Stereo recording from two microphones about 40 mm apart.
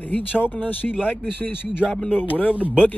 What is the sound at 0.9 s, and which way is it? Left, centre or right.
Speech, right.